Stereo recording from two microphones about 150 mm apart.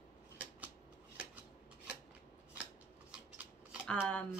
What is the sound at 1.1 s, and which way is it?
Shuffling cards, 5° right (ahead or behind).